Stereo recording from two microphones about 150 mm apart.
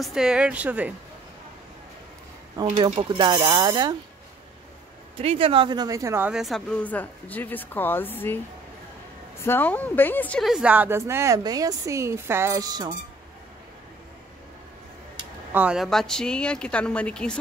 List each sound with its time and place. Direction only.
0.0 s a woman's voice: 5° right (ahead or behind)
3.1 s a woman's voice: 25° right (ahead or behind)
5.2 s a woman's voice: 40° right (ahead or behind); by 6.3 s 15° right (ahead or behind)
6.3 s speech: centre (ahead or behind)
9.4 s speech: 15° left (ahead or behind)
10.4 s a woman's voice: 5° right (ahead or behind); by 12.9 s 25° right (ahead or behind)
15.5 s a woman's voice: 5° right (ahead or behind)